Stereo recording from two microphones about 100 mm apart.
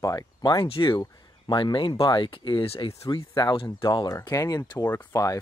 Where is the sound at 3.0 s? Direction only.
40° left (ahead or behind).